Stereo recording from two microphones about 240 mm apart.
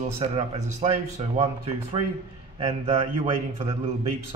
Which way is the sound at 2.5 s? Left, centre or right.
Right.